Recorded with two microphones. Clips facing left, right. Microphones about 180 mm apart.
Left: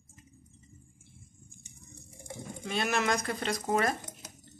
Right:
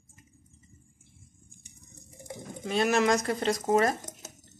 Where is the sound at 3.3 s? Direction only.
25° right (ahead or behind).